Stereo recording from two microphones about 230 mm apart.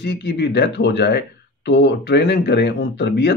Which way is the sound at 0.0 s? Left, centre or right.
Left.